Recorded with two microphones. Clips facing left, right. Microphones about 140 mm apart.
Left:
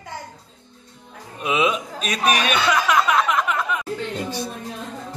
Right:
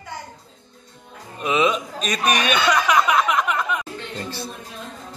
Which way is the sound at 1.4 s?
5° left (ahead or behind).